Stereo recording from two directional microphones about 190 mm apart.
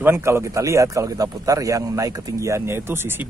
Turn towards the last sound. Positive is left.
turn(degrees=-10)  # may be behind; listen again after turning